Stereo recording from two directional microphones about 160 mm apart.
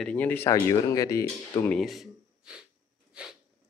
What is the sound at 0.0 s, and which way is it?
Speech, 10° left (ahead or behind).